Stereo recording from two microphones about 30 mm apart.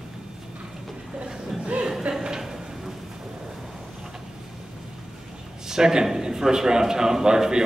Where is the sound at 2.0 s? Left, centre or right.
Right.